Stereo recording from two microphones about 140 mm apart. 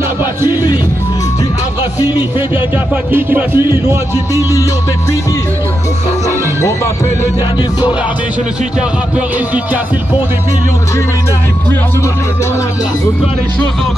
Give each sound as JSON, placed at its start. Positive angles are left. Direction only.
{"t": 2.0, "sound": "music", "side_deg": 30}
{"t": 3.1, "sound": "music", "side_deg": -15}